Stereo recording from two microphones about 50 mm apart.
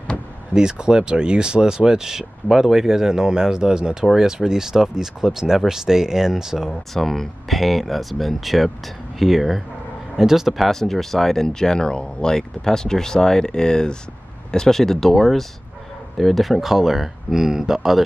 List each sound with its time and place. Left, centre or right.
0.6 s speech: centre
6.9 s speech: centre